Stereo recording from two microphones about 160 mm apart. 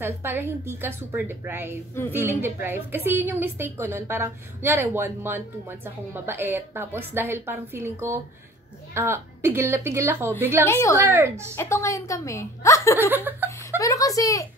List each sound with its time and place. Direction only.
0.0 s a woman's voice: 15° right (ahead or behind)
10.6 s a woman's voice: 20° left (ahead or behind)
11.1 s a woman's voice: 15° right (ahead or behind)
11.5 s a woman's voice: 15° left (ahead or behind)
13.1 s laughter: 10° right (ahead or behind)
13.7 s a woman's voice: 20° left (ahead or behind)